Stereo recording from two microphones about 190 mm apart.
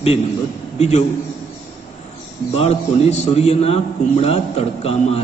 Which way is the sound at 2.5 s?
35° left (ahead or behind).